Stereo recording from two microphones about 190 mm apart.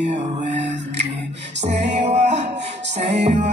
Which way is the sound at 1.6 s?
35° right (ahead or behind).